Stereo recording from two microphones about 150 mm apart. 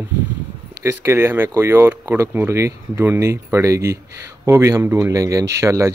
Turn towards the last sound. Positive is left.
turn(degrees=-20)  # may be behind; listen again after turning